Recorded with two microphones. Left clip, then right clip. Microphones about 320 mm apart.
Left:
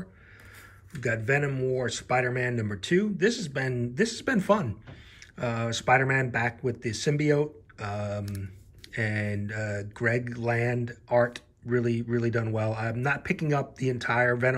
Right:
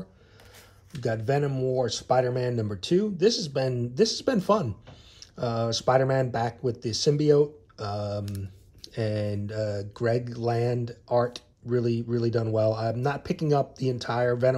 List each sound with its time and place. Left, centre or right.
1.0 s speech: centre